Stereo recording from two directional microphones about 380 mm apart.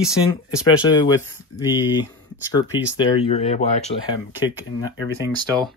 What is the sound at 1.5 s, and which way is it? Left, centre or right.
Speech, left.